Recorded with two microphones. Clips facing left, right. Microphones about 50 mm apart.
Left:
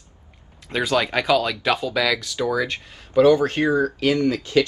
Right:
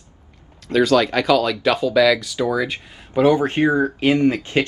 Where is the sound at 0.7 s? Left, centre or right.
Centre.